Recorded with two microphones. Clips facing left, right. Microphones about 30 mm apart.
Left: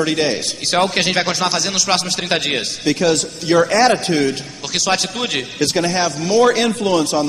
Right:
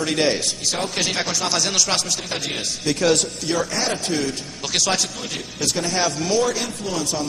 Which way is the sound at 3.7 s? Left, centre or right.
Left.